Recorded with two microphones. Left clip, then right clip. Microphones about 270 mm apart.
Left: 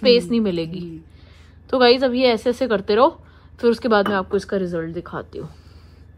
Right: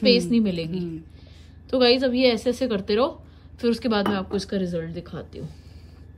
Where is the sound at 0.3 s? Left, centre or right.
Centre.